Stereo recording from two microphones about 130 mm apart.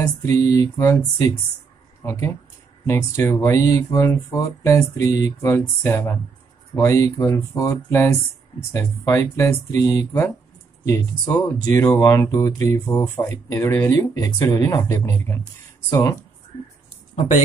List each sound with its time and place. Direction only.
0.0 s speech: 20° left (ahead or behind)
2.0 s speech: 25° left (ahead or behind)